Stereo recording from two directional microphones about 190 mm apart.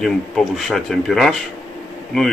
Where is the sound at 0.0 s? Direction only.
Centre (ahead or behind).